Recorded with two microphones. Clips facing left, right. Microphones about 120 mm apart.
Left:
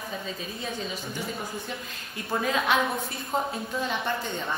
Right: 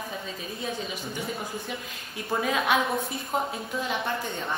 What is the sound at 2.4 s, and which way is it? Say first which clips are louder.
A woman's voice: even; 5° right (ahead or behind).